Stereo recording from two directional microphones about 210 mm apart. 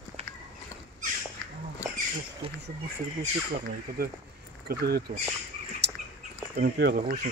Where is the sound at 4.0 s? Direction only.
45° right (ahead or behind).